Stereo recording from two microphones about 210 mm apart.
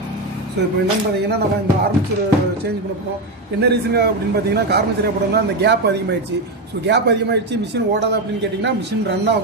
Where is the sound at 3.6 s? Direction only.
50° right (ahead or behind).